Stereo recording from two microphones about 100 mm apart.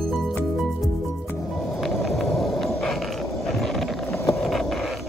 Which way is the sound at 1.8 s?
Centre (ahead or behind).